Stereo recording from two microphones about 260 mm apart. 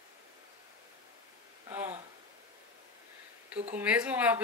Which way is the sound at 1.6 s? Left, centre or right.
Centre.